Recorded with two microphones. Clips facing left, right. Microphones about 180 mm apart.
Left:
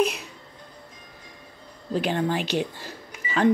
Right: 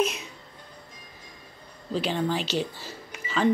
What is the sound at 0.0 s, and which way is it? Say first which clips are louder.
Music: left 3 dB; 60° left (ahead or behind).